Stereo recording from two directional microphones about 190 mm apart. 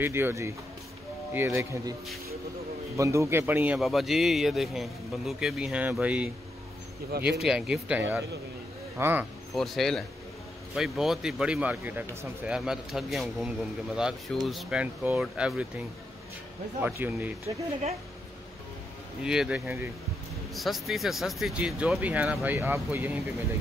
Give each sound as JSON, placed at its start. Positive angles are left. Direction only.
{"t": 0.0, "sound": "speech", "side_deg": -10}
{"t": 3.0, "sound": "speech", "side_deg": -15}
{"t": 7.1, "sound": "speech", "side_deg": -55}
{"t": 7.3, "sound": "speech", "side_deg": -5}
{"t": 9.6, "sound": "speech", "side_deg": 0}
{"t": 16.8, "sound": "speech", "side_deg": -10}
{"t": 19.2, "sound": "speech", "side_deg": -5}